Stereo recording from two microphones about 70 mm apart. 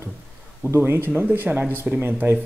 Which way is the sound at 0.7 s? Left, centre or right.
Right.